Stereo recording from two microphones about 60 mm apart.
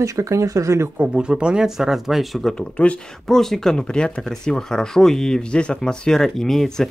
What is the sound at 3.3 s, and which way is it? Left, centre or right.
Speech, centre.